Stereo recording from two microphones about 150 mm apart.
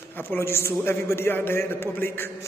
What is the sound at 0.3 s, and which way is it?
A man's voice, 15° left (ahead or behind).